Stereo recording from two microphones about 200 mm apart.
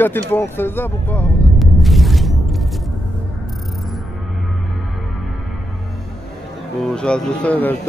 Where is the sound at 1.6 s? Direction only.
Centre (ahead or behind).